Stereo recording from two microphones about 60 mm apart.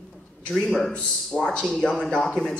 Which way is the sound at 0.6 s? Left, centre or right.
Centre.